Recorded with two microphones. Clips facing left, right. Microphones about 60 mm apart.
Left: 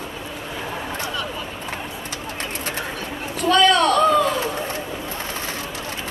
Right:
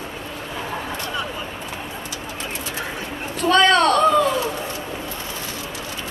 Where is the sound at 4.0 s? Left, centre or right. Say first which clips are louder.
Even; centre.